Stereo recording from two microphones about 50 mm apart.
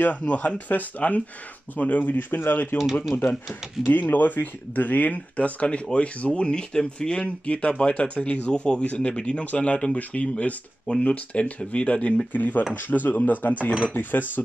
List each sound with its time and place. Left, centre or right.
0.0 s speech: left
3.3 s speech: centre
3.9 s speech: left
12.3 s speech: left